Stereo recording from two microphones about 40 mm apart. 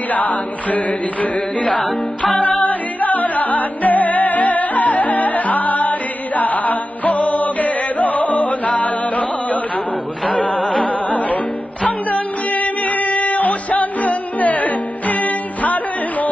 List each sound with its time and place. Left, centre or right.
0.1 s chant: left
1.8 s music: centre
2.6 s music: left
10.6 s music: centre
11.1 s music: left